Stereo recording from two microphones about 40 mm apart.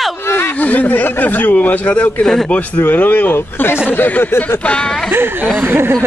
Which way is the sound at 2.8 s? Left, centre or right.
Left.